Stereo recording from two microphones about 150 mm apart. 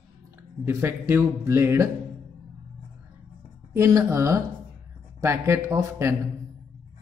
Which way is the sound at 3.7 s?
20° right (ahead or behind).